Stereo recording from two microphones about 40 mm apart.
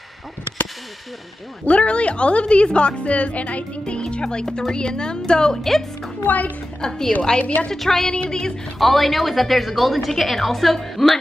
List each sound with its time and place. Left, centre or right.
1.7 s a woman's voice: left; by 5.9 s centre
6.2 s a woman's voice: left
6.8 s a woman's voice: centre
7.2 s a woman's voice: left
7.7 s a woman's voice: centre